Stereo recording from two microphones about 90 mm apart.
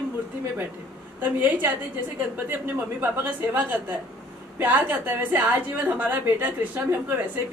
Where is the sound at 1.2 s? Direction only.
20° right (ahead or behind).